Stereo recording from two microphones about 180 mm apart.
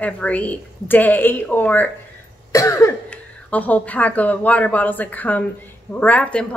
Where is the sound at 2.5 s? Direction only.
20° left (ahead or behind).